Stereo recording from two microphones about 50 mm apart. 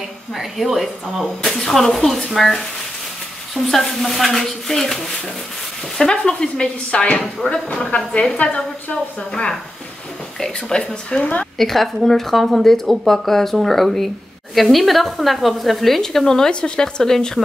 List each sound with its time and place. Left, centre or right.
0.3 s speech: centre
1.4 s a woman's voice: centre
11.5 s speech: centre